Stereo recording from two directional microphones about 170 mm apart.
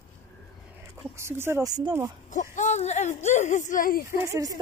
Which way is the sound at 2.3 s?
45° left (ahead or behind).